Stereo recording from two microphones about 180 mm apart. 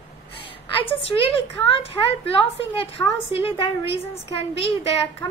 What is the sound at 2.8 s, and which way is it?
A woman's voice, 30° left (ahead or behind).